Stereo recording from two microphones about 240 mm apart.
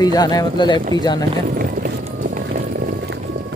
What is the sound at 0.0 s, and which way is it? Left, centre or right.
Speech, centre.